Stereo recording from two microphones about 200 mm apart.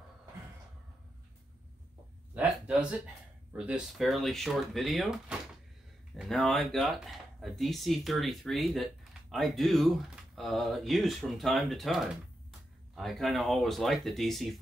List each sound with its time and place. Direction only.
2.3 s a man's voice: 5° right (ahead or behind)